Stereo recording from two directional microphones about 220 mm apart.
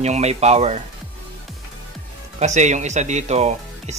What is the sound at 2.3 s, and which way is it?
A man's voice, 30° right (ahead or behind).